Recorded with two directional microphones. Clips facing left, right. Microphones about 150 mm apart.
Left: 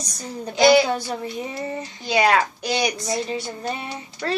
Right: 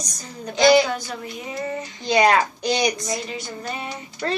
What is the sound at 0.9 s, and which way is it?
Child singing, 30° left (ahead or behind).